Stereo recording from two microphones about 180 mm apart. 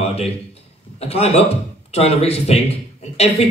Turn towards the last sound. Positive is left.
turn(degrees=35)  # may be behind; listen again after turning